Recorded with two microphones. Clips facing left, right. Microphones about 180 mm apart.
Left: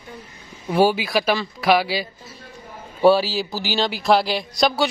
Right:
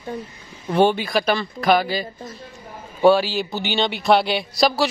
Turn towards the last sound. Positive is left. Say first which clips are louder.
# right 1 dB
turn(degrees=0)  # may be behind; listen again after turning